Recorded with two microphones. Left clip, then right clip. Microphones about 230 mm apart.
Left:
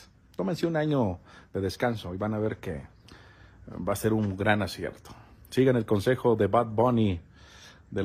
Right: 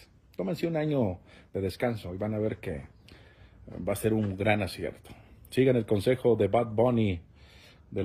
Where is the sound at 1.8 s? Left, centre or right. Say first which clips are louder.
Left 2 dB; left.